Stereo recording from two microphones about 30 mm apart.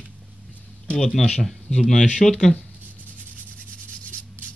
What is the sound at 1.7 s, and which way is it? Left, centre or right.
Speech, left.